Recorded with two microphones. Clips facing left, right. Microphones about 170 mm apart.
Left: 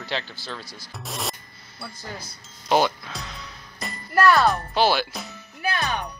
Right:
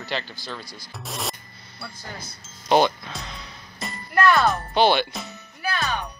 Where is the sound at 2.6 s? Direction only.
5° left (ahead or behind).